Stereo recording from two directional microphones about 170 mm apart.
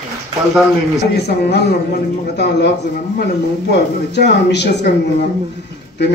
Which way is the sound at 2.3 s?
80° left.